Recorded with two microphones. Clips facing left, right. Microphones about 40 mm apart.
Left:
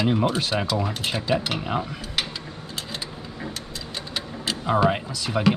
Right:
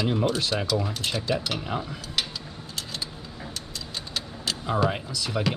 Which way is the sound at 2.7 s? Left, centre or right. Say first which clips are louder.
Left 1 dB; centre.